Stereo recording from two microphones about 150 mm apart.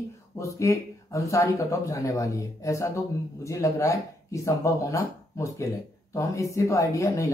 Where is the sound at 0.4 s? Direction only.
20° left (ahead or behind).